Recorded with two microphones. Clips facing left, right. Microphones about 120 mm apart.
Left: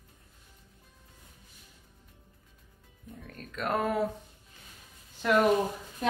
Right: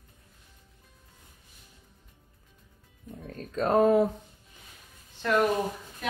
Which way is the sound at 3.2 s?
35° right (ahead or behind).